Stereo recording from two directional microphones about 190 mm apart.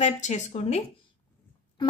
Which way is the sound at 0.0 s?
35° left (ahead or behind).